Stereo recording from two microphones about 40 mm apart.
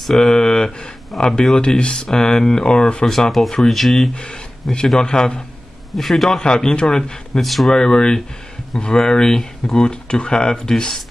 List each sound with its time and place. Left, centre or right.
0.0 s speech: centre
0.3 s speech: centre
1.1 s speech: centre
1.5 s speech: left
3.1 s speech: centre
4.1 s speech: left
5.9 s speech: centre
6.4 s speech: centre
7.3 s speech: centre
7.7 s speech: centre